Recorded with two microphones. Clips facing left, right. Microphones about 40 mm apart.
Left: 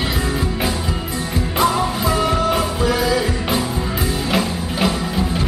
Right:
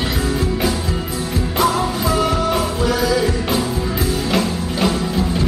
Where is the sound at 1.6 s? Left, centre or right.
Centre.